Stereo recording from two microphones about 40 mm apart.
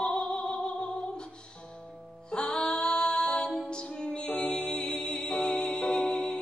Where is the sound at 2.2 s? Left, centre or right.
Centre.